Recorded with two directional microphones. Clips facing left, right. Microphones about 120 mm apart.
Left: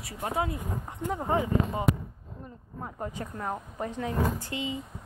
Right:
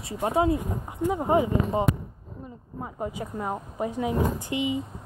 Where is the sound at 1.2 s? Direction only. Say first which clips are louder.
Right 3 dB; 20° right (ahead or behind).